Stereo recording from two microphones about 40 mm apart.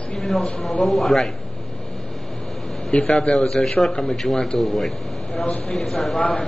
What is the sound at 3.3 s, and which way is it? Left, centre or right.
A man's voice, centre.